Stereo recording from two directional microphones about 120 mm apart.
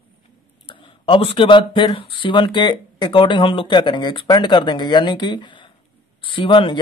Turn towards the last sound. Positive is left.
turn(degrees=45)  # may be behind; listen again after turning